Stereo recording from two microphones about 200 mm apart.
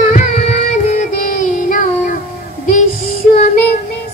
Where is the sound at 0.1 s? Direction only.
35° left (ahead or behind).